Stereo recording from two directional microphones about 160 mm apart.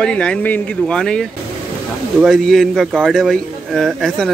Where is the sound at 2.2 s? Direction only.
Centre (ahead or behind).